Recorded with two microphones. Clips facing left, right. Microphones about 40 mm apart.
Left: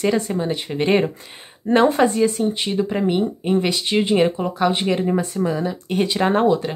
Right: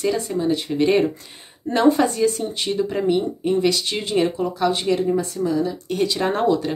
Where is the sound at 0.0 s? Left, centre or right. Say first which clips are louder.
Left 1 dB; left.